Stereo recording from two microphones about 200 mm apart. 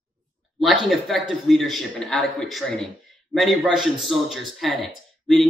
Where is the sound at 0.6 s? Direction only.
Centre (ahead or behind).